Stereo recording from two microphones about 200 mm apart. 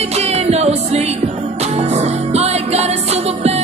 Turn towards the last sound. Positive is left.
turn(degrees=-30)  # may be behind; listen again after turning